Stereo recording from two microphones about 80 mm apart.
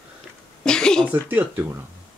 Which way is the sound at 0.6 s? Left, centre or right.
Centre.